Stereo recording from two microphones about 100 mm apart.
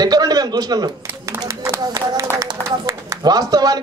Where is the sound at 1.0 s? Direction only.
20° right (ahead or behind).